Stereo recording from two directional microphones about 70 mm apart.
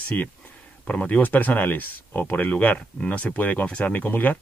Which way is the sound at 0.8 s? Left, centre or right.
Centre.